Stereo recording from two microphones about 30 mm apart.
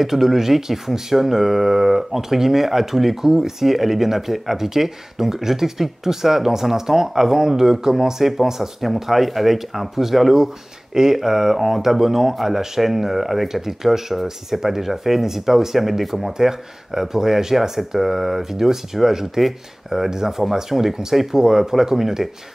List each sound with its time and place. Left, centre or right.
0.0 s speech: centre
16.3 s speech: centre